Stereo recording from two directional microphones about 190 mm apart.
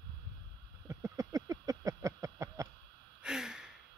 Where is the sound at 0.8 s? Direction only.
15° right (ahead or behind).